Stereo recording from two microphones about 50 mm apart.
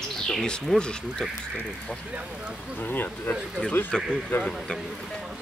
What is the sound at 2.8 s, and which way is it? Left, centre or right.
Speech, left.